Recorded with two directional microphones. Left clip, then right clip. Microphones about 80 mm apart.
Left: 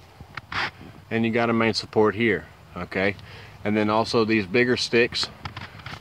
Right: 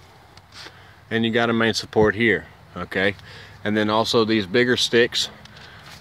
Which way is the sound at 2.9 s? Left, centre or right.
Right.